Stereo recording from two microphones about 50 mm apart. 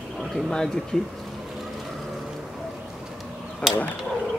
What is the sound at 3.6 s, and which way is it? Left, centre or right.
Speech, left.